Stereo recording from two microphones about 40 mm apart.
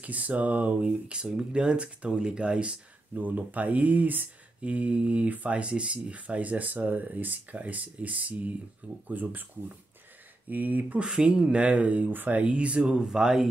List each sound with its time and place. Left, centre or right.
0.0 s speech: right
3.2 s speech: right
4.6 s speech: right
10.5 s speech: right
11.0 s speech: right
12.3 s speech: right; by 13.5 s centre